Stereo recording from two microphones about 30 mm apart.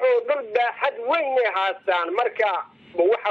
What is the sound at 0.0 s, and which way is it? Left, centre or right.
A man's voice, centre.